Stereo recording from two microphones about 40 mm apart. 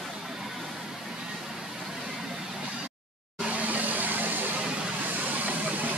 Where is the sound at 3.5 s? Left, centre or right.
Right.